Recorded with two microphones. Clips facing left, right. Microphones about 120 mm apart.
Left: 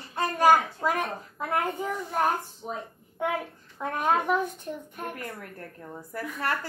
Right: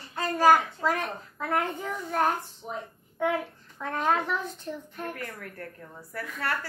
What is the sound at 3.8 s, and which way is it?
A woman's voice, 15° left (ahead or behind).